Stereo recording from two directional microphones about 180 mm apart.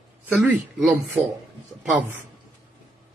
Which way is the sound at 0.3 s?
5° right (ahead or behind).